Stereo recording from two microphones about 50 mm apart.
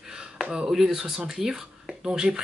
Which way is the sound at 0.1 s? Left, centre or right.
Centre.